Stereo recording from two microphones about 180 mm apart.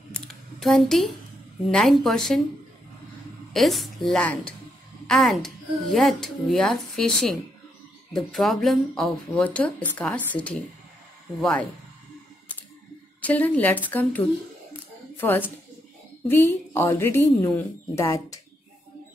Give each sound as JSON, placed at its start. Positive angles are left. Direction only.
{"t": 0.1, "sound": "a sound", "side_deg": 0}
{"t": 1.7, "sound": "speech", "side_deg": 0}
{"t": 3.5, "sound": "speech", "side_deg": 0}
{"t": 13.3, "sound": "a woman's voice", "side_deg": 10}